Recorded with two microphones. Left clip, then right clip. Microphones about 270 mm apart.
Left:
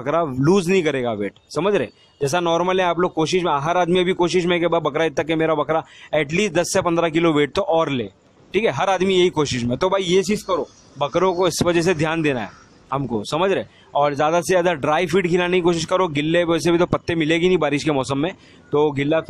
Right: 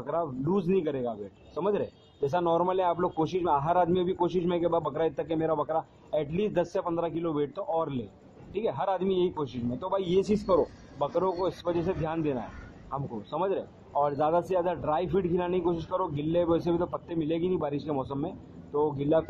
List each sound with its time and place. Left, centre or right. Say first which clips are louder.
0.5 s a man's voice: left 11 dB; left
7.3 s speech: left 11 dB; left
8.5 s a man's voice: left 10 dB; left
9.8 s speech: left 11 dB; left
10.0 s a man's voice: left 8 dB; left
10.5 s speech: left 3 dB; left
11.7 s a man's voice: left 11 dB; left
14.0 s speech: left 8 dB; left
14.6 s a man's voice: left 10 dB; left